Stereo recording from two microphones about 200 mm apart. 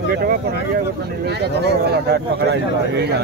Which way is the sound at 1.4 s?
55° right (ahead or behind).